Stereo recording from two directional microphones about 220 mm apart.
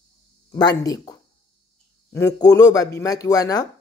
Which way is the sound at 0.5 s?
20° left (ahead or behind).